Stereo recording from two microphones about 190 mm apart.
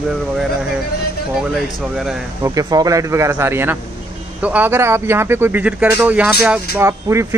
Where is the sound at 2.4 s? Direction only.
20° right (ahead or behind).